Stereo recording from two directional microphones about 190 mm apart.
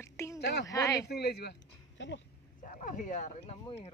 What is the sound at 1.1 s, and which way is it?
Speech, 60° left (ahead or behind).